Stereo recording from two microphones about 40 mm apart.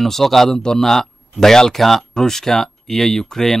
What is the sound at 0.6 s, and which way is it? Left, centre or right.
Speech, centre.